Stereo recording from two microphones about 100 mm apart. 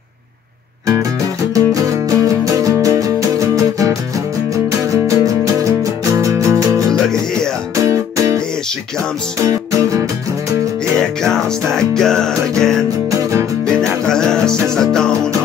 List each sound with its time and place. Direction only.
1.5 s music: 35° right (ahead or behind)
6.9 s music: 5° left (ahead or behind)
7.7 s music: 30° right (ahead or behind)
9.4 s music: 35° right (ahead or behind)
11.0 s music: 5° left (ahead or behind)
13.7 s music: 5° left (ahead or behind)